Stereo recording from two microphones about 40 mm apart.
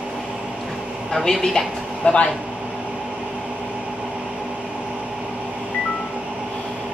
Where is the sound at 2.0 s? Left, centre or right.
Left.